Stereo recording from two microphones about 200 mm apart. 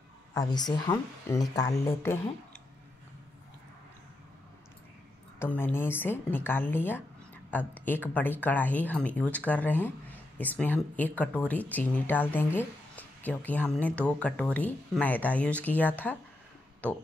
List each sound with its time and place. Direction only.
0.3 s speech: 20° left (ahead or behind)
5.4 s speech: 10° left (ahead or behind)